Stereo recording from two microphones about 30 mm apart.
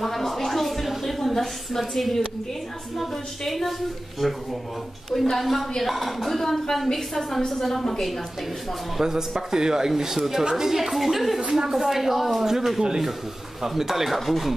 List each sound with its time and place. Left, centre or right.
0.0 s a sound: centre
1.8 s a woman's voice: centre
5.1 s a woman's voice: centre
5.4 s a woman's voice: centre
9.0 s a man's voice: centre
11.5 s a man's voice: centre